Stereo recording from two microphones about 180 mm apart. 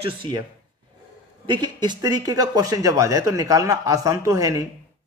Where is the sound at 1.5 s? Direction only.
25° right (ahead or behind).